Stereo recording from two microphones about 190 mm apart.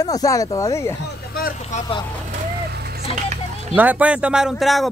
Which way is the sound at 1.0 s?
50° left (ahead or behind).